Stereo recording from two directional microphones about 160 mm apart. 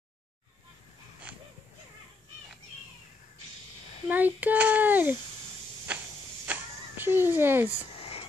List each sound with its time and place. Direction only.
4.1 s a child's voice: 10° right (ahead or behind)
6.4 s a sound: 10° right (ahead or behind)
8.0 s whispering: 35° left (ahead or behind)